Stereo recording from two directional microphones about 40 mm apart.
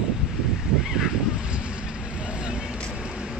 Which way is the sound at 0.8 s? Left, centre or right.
Centre.